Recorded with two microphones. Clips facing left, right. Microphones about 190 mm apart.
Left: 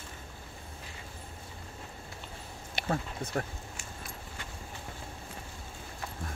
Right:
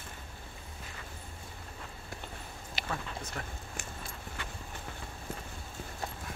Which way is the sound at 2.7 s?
50° left (ahead or behind).